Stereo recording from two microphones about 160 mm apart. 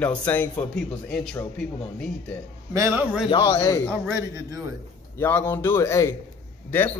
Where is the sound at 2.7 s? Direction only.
15° right (ahead or behind).